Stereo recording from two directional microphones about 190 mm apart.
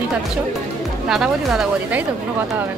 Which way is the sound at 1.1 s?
Centre (ahead or behind).